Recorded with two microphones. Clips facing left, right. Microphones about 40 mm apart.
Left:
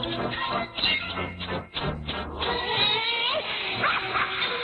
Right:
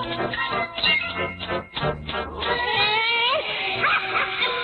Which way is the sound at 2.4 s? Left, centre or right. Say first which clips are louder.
Right 4 dB; right.